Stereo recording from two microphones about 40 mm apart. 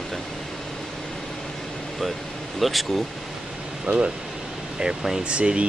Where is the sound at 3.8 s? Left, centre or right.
Right.